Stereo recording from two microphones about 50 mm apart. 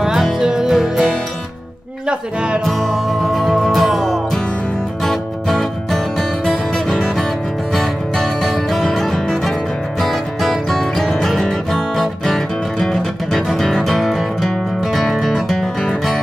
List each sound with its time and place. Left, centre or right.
0.4 s music: centre
2.0 s speech: centre
2.6 s music: centre